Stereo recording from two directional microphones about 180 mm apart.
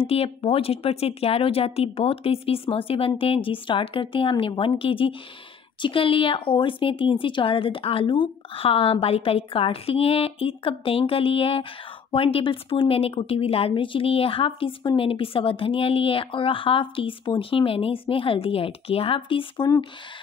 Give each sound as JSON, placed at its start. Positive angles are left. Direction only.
{"t": 0.0, "sound": "a woman's voice", "side_deg": 35}